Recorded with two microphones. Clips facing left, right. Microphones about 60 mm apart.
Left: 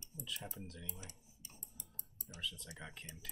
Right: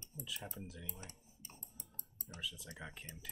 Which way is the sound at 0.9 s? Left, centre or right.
Right.